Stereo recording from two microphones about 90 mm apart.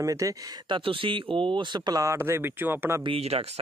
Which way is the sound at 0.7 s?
70° right (ahead or behind).